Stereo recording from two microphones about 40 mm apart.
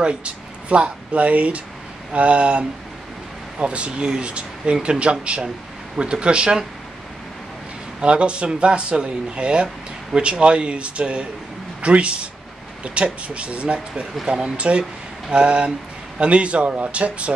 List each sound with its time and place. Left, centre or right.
0.0 s speech: right
8.0 s speech: right
14.2 s speech: centre
14.6 s speech: right